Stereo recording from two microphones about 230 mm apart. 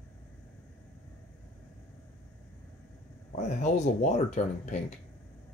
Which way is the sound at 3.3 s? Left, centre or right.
Left.